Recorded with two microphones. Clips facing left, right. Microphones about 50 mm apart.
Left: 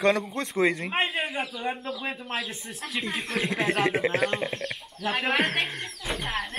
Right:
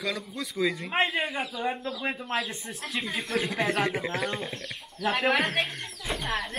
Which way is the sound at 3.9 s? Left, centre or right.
Left.